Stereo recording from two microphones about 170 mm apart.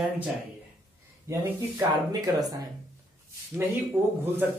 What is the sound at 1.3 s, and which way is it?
Speech, 20° right (ahead or behind).